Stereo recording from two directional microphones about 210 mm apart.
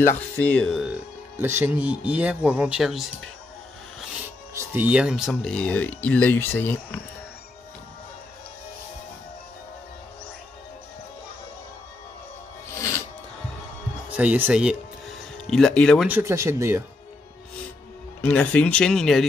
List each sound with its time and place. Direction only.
0.4 s speech: 5° left (ahead or behind)
4.6 s speech: 10° right (ahead or behind); by 7.0 s 10° left (ahead or behind)
12.7 s music: 15° left (ahead or behind)
14.1 s speech: 5° right (ahead or behind)
16.1 s speech: 10° right (ahead or behind)
18.2 s speech: 5° left (ahead or behind)